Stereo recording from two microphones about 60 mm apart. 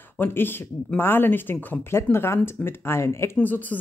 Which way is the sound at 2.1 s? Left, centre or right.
Left.